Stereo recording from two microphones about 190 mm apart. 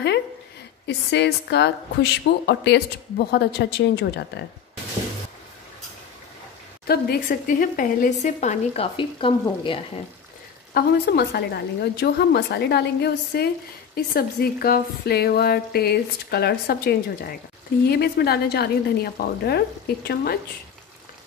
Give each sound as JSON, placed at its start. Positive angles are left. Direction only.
{"t": 0.8, "sound": "a woman's voice", "side_deg": 65}
{"t": 6.9, "sound": "speech", "side_deg": 50}
{"t": 10.7, "sound": "a woman's voice", "side_deg": 55}